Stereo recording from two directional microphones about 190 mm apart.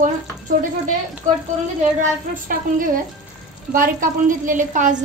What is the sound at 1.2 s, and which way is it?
Speech, 40° right (ahead or behind).